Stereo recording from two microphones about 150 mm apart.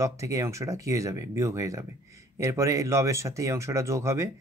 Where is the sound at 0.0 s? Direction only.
20° right (ahead or behind).